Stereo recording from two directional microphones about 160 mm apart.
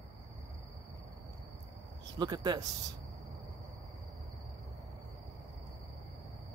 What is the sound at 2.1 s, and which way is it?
Speech, 25° right (ahead or behind).